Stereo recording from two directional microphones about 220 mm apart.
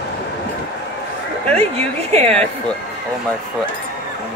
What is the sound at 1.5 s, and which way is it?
Speech, 30° right (ahead or behind).